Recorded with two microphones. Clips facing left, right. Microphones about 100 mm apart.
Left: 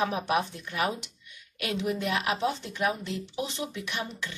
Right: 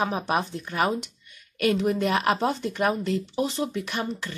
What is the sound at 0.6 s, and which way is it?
Speech, 35° right (ahead or behind).